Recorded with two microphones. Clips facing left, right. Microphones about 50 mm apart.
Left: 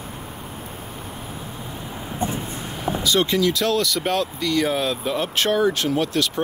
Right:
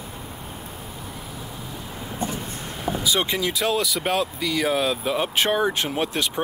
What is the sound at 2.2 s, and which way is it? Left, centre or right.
Vehicle, left.